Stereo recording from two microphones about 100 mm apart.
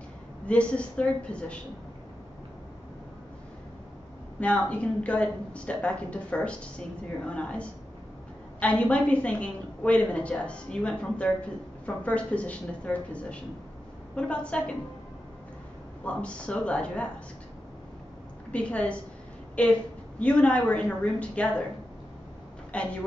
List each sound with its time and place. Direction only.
0.5 s a woman's voice: 10° left (ahead or behind)
4.4 s a woman's voice: 10° left (ahead or behind)
16.1 s a woman's voice: 10° left (ahead or behind)
18.5 s a woman's voice: 10° left (ahead or behind)
22.7 s a woman's voice: 10° left (ahead or behind)